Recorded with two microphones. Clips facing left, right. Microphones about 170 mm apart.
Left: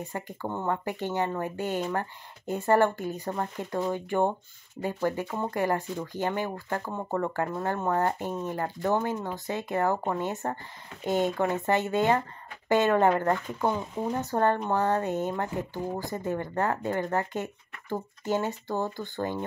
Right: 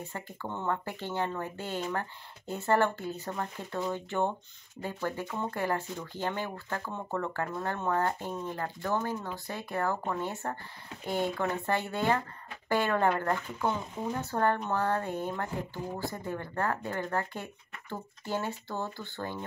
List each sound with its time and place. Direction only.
0.0 s speech: 15° left (ahead or behind)
7.3 s speech: 15° left (ahead or behind)